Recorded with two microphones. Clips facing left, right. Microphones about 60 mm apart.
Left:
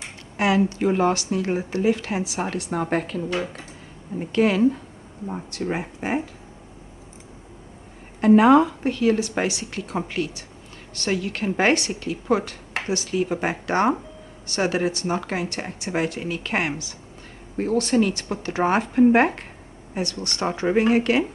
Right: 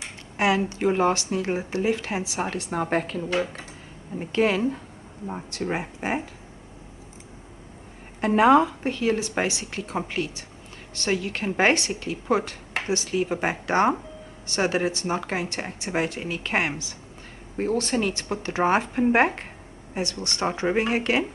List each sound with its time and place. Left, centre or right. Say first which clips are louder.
0.4 s speech: left 2 dB; right
4.3 s speech: left 3 dB; right
8.2 s speech: left 3 dB; right